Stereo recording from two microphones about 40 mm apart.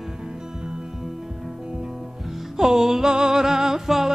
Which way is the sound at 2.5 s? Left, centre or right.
Centre.